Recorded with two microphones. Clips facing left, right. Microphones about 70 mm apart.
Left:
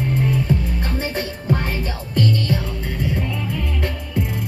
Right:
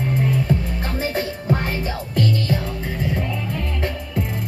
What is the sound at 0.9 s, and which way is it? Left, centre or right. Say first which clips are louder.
Music: right 4 dB; centre.